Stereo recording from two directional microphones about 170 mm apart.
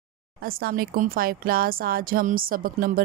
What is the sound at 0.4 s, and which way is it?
Speech, 60° right (ahead or behind).